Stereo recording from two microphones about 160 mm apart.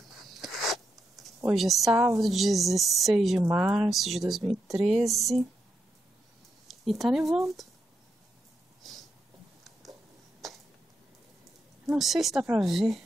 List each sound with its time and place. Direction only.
0.2 s a sound: centre (ahead or behind)
1.5 s a woman's voice: centre (ahead or behind)
3.4 s speech: 15° right (ahead or behind)
3.7 s a woman's voice: centre (ahead or behind)
6.7 s speech: centre (ahead or behind)
11.8 s a woman's voice: centre (ahead or behind)